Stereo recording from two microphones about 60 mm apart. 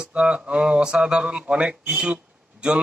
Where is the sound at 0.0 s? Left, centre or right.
Centre.